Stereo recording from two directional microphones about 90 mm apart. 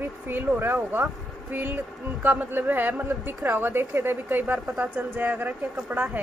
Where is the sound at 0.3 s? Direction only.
25° right (ahead or behind).